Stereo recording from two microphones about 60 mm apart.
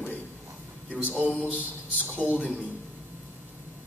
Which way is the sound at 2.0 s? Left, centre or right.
Left.